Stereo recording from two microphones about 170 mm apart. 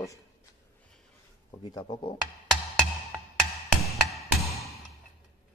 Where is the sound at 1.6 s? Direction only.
25° left (ahead or behind).